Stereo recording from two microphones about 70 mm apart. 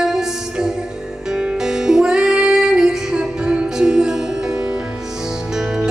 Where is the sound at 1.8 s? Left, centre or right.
Centre.